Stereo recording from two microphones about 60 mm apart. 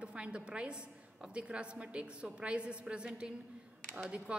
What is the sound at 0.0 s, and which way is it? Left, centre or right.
A woman's voice, centre.